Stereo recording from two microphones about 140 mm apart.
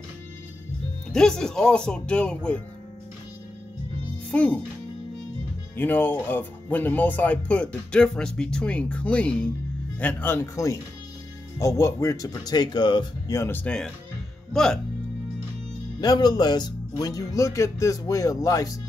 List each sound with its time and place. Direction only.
1.1 s speech: 5° left (ahead or behind)
4.3 s speech: 10° left (ahead or behind)
5.8 s speech: 15° left (ahead or behind)
16.0 s speech: 30° left (ahead or behind)